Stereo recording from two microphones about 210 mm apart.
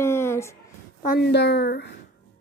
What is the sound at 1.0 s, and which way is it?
Speech, 45° left (ahead or behind).